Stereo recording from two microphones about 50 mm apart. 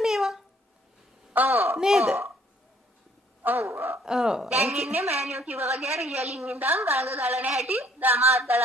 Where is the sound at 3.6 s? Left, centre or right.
Right.